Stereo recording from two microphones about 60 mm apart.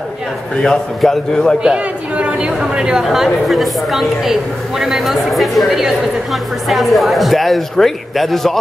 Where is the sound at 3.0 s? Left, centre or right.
Centre.